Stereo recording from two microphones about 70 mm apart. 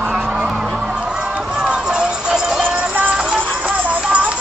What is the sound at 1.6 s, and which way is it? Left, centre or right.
Music, centre.